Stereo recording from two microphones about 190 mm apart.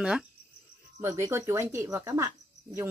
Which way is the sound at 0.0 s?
5° right (ahead or behind).